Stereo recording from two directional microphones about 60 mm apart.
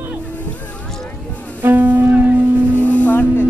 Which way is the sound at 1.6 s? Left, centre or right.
Right.